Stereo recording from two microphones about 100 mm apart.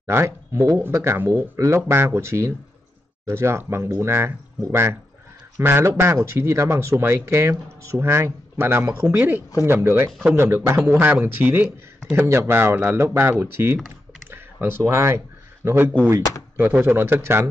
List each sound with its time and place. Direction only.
0.0 s speech: 25° right (ahead or behind)